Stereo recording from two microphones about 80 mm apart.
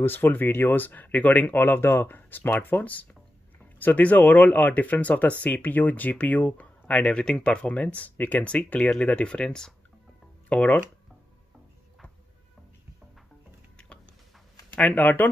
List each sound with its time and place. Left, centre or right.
0.0 s speech: left
14.8 s speech: left